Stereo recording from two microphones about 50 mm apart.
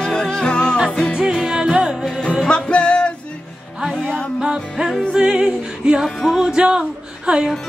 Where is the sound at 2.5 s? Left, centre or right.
Left.